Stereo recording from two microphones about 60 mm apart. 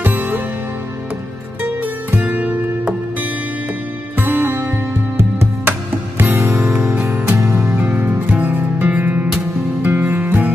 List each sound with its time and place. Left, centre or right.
0.0 s music: right
1.6 s music: right
4.2 s music: right
7.3 s music: right
7.7 s music: right